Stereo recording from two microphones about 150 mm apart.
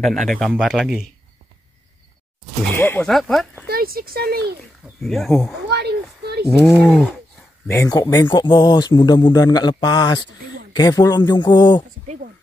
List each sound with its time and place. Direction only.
0.0 s speech: centre (ahead or behind)
2.7 s speech: 15° left (ahead or behind)
3.1 s speech: centre (ahead or behind)
3.6 s speech: 85° right
5.0 s speech: centre (ahead or behind)
5.8 s a sound: 90° right
7.6 s speech: 20° left (ahead or behind)